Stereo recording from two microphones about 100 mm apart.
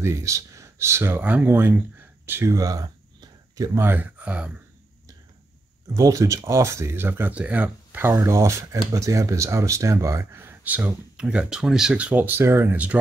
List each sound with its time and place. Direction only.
0.0 s speech: 30° right (ahead or behind)
2.5 s a sound: 35° right (ahead or behind)
3.8 s speech: 20° right (ahead or behind)
5.9 s speech: 35° right (ahead or behind)
12.7 s speech: 15° right (ahead or behind)